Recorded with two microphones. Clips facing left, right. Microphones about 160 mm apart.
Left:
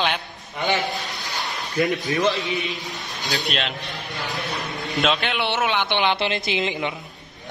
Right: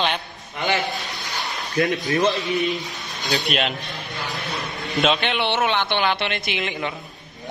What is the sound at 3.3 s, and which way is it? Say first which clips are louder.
Speech: right 3 dB; centre (ahead or behind).